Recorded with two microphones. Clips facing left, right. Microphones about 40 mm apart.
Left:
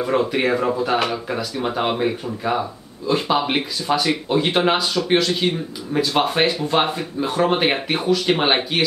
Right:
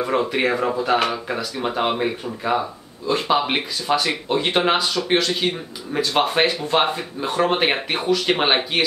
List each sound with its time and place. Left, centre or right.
0.0 s speech: centre